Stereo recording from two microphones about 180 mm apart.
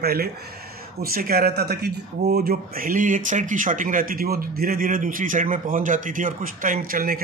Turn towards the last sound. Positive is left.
turn(degrees=-50)  # may be behind; listen again after turning